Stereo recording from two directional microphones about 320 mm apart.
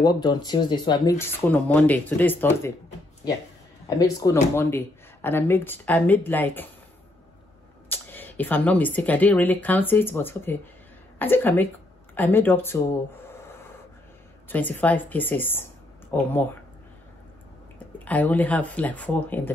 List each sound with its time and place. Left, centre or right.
0.0 s speech: centre
3.8 s speech: centre
7.9 s speech: centre
14.5 s speech: centre
17.9 s speech: centre